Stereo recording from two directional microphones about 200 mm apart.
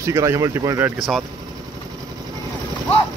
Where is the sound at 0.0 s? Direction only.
15° right (ahead or behind).